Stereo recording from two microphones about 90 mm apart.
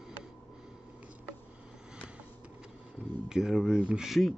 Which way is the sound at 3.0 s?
20° right (ahead or behind).